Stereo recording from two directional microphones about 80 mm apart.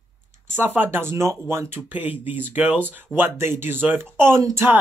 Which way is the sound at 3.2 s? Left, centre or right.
Right.